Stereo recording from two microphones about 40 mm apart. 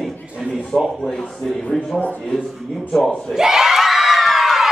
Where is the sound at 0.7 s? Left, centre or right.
Left.